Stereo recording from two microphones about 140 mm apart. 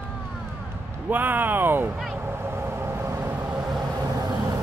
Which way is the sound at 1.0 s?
15° right (ahead or behind).